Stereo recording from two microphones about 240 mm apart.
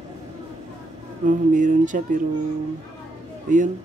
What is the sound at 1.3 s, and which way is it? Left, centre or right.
Speech, right.